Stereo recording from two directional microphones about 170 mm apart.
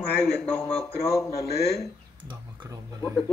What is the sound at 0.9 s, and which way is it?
Speech, 15° left (ahead or behind).